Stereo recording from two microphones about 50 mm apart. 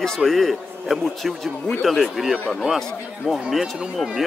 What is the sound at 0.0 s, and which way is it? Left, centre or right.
A man's voice, centre.